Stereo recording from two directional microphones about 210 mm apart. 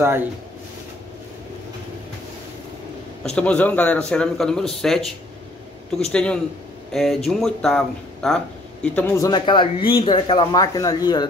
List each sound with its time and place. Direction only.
0.0 s speech: 10° right (ahead or behind)
3.3 s a man's voice: 5° left (ahead or behind)
6.1 s a man's voice: 5° left (ahead or behind)